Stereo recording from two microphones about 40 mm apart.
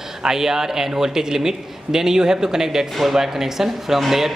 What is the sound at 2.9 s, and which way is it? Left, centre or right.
A man's voice, centre.